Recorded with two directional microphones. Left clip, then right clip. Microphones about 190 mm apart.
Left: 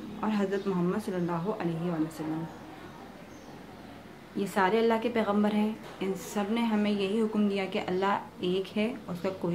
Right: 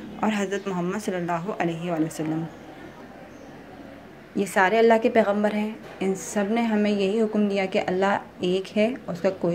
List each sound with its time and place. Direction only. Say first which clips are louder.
0.2 s a woman's voice: right 5 dB; 25° right (ahead or behind)
4.4 s a woman's voice: right 7 dB; 25° right (ahead or behind)